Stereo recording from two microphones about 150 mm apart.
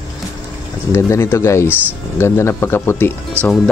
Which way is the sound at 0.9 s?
20° left (ahead or behind).